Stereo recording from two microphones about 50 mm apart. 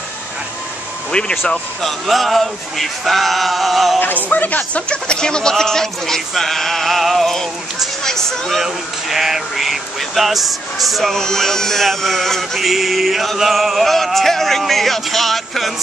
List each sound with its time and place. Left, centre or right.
1.1 s speech: centre
1.5 s music: centre
4.0 s speech: left
4.8 s speech: centre
8.6 s music: centre
11.1 s speech: centre
12.5 s music: centre